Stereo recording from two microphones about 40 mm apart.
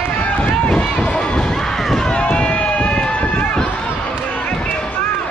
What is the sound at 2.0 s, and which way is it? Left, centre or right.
Run, left.